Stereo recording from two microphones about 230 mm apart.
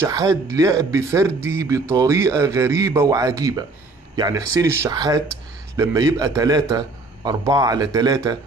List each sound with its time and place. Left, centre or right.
0.0 s speech: centre